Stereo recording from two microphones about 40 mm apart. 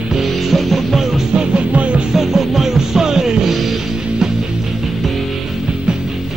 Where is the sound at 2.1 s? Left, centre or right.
Centre.